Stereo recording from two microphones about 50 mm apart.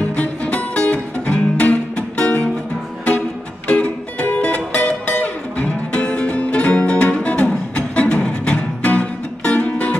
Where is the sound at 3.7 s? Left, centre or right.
Left.